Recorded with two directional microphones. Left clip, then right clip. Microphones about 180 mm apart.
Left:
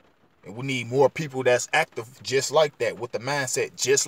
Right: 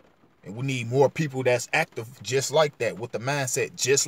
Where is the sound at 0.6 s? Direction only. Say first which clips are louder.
Left 1 dB; 10° right (ahead or behind).